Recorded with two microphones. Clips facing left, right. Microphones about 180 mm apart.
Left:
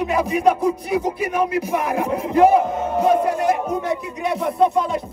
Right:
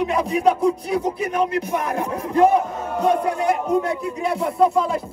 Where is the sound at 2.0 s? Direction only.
15° left (ahead or behind).